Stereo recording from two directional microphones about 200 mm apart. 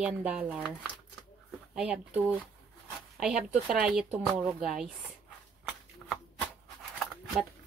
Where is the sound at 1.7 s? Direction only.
5° right (ahead or behind).